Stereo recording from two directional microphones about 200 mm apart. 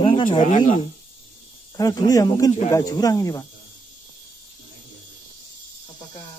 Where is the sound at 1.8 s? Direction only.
20° left (ahead or behind).